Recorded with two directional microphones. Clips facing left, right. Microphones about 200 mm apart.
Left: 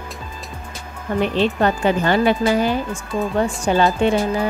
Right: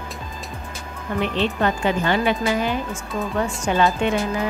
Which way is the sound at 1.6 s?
40° left (ahead or behind).